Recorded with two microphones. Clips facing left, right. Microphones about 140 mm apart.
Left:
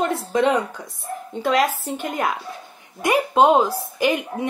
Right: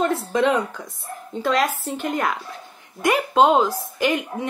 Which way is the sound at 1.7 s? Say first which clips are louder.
Even; 50° left (ahead or behind).